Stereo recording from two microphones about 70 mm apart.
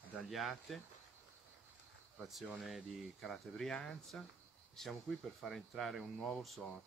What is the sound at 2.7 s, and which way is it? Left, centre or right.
Speech, centre.